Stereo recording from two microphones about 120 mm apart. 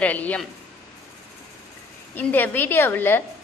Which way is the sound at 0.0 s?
10° left (ahead or behind).